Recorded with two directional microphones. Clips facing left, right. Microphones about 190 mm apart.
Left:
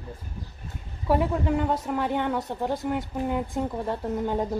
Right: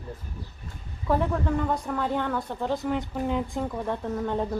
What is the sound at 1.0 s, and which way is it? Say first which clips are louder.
Speech: left 1 dB; 10° left (ahead or behind).